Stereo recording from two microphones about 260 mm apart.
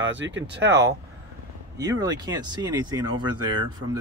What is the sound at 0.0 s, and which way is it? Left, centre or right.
Speech, right.